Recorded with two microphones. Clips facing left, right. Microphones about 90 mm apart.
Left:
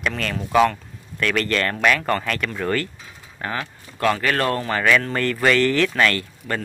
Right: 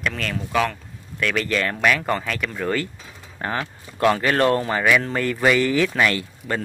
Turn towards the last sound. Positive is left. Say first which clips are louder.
# even
turn(degrees=-15)  # may be behind; listen again after turning